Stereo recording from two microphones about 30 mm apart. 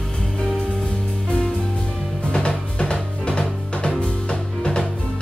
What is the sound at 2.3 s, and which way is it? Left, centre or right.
Music, left.